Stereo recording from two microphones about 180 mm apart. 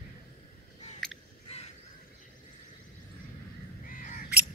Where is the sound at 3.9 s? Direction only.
50° left (ahead or behind).